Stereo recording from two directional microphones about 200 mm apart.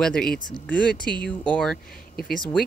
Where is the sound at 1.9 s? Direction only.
50° left (ahead or behind).